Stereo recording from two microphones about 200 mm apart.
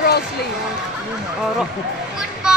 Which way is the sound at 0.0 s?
50° left (ahead or behind).